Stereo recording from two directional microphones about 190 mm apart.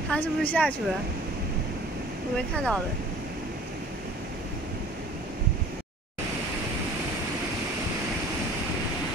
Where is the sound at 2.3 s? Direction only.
5° left (ahead or behind).